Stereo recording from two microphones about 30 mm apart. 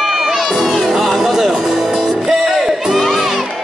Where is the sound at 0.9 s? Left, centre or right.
Centre.